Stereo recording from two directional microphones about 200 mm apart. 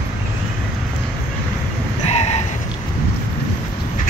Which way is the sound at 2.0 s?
30° left (ahead or behind).